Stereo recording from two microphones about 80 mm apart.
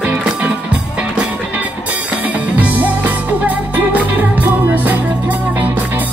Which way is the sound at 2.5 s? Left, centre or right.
Centre.